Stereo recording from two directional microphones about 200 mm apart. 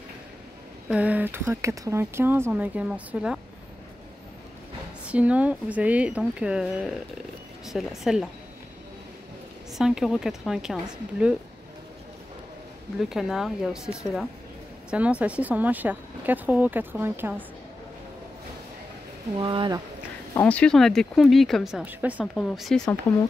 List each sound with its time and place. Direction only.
0.8 s speech: 5° right (ahead or behind)
5.0 s speech: 5° right (ahead or behind)
9.8 s speech: centre (ahead or behind)
13.1 s speech: centre (ahead or behind)
19.3 s speech: 25° right (ahead or behind)
20.3 s speech: 5° left (ahead or behind)